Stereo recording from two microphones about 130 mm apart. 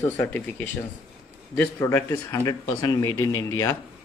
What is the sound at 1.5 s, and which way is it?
Speech, 15° left (ahead or behind).